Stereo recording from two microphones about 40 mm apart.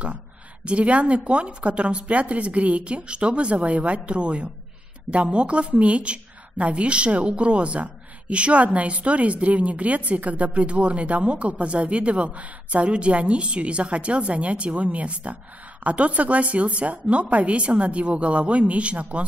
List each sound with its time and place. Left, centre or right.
0.7 s a woman's voice: right